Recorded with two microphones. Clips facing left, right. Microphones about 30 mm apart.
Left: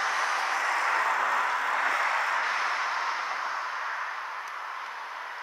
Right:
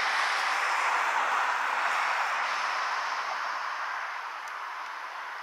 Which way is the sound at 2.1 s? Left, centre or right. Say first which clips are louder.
Left 1 dB; left.